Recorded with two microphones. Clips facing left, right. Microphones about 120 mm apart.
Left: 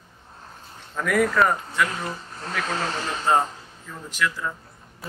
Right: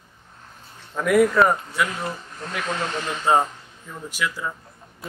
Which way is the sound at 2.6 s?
35° left (ahead or behind).